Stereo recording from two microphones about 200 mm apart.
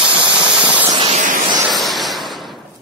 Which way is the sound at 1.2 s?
40° right (ahead or behind).